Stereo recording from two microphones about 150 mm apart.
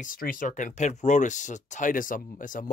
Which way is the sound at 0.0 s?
65° left (ahead or behind).